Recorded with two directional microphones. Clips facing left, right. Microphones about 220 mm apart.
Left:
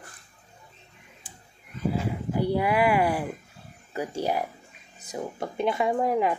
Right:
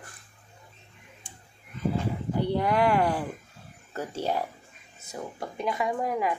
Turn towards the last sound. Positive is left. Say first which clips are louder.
# left 4 dB
turn(degrees=25)  # may be behind; listen again after turning